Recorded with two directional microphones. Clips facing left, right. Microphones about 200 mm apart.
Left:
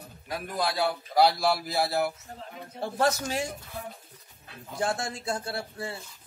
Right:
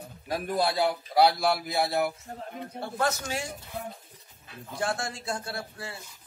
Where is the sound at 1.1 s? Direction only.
Centre (ahead or behind).